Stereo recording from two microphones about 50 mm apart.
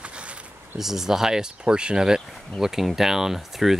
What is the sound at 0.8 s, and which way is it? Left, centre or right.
Speech, centre.